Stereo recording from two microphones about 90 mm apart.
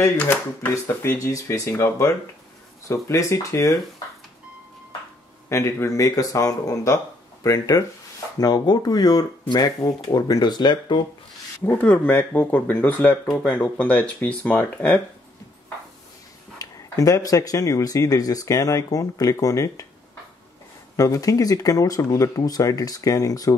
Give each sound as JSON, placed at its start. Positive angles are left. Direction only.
{"t": 0.8, "sound": "speech", "side_deg": 30}
{"t": 5.5, "sound": "speech", "side_deg": 35}
{"t": 11.6, "sound": "speech", "side_deg": 20}
{"t": 16.5, "sound": "speech", "side_deg": 40}
{"t": 20.9, "sound": "speech", "side_deg": 40}